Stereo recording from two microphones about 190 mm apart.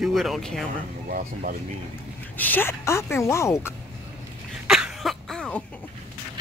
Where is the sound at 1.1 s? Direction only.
45° right (ahead or behind).